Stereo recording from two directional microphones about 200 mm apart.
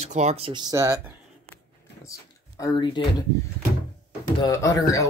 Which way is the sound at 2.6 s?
20° left (ahead or behind).